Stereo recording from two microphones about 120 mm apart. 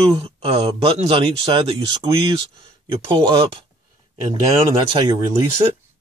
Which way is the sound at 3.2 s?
45° right (ahead or behind).